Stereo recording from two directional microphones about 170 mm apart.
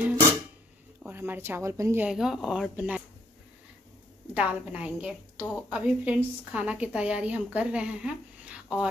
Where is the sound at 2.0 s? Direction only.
Centre (ahead or behind).